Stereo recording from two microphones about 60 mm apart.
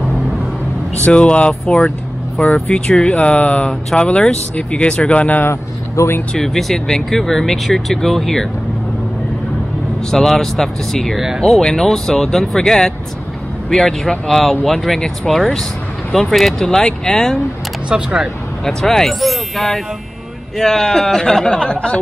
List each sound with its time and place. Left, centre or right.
1.0 s speech: left
1.5 s speech: centre
5.4 s speech: left
6.3 s speech: centre
10.1 s speech: centre
11.1 s speech: centre
11.5 s speech: centre
17.8 s speech: centre
18.6 s speech: centre